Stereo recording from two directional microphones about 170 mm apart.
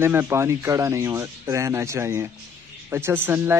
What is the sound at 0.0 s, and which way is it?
Speech, 15° right (ahead or behind).